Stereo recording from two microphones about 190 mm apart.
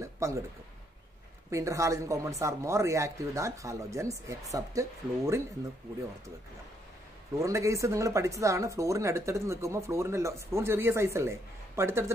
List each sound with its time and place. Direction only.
0.0 s a sound: 15° right (ahead or behind)
1.5 s speech: 15° right (ahead or behind)
7.4 s speech: 15° right (ahead or behind)